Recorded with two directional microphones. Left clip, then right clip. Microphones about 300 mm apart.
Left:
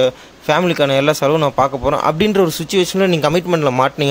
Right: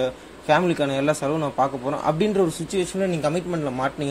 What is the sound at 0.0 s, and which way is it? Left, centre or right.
A man's voice, left.